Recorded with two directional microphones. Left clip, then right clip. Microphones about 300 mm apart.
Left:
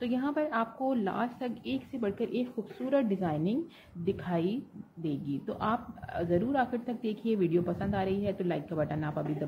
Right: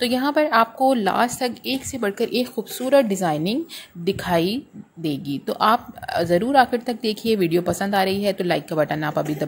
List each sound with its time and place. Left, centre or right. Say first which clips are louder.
0.0 s a woman's voice: right 12 dB; right